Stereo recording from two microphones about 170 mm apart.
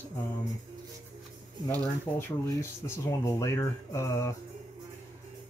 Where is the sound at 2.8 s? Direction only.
15° left (ahead or behind).